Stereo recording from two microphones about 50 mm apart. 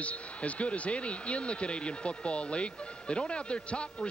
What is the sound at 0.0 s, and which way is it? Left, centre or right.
Speech, left.